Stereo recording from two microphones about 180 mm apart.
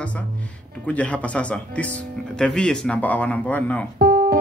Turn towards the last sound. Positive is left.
turn(degrees=-55)  # may be behind; listen again after turning